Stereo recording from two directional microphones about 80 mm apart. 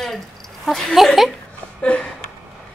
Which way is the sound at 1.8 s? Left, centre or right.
Centre.